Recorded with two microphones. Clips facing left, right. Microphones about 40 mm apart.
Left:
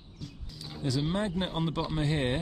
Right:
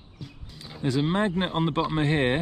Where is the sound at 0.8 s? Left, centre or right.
Right.